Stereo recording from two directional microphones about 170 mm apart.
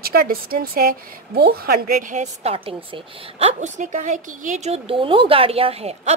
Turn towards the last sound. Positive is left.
turn(degrees=-35)  # may be behind; listen again after turning